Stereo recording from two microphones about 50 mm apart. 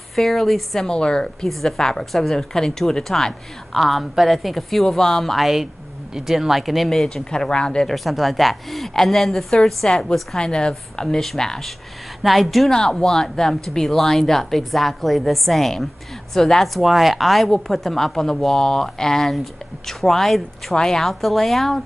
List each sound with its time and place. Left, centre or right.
0.1 s a woman's voice: centre
0.8 s speech: centre
1.5 s a woman's voice: centre
5.3 s a woman's voice: centre
7.2 s speech: centre
7.9 s a woman's voice: centre
9.8 s a woman's voice: centre